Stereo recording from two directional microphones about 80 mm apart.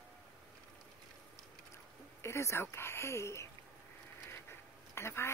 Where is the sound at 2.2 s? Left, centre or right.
Left.